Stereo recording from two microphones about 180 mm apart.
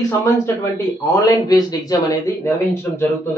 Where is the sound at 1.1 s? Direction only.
20° left (ahead or behind).